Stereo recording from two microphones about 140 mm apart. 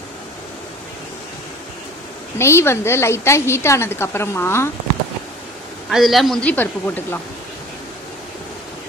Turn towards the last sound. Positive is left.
turn(degrees=15)  # may be behind; listen again after turning